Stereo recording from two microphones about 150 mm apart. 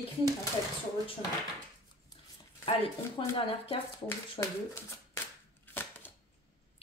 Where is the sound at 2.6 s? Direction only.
35° left (ahead or behind).